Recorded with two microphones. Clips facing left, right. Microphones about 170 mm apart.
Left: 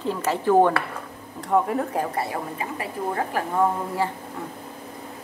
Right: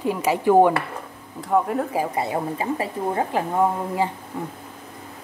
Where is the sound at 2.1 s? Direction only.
20° right (ahead or behind).